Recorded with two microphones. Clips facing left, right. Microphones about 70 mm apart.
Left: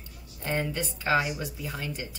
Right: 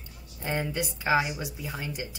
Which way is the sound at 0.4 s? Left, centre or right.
Centre.